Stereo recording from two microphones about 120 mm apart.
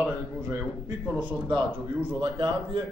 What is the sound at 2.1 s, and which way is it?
Speech, 45° right (ahead or behind).